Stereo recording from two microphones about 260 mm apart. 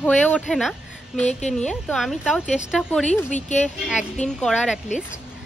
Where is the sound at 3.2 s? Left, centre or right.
Left.